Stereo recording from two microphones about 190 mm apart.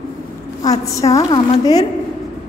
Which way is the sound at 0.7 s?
15° left (ahead or behind).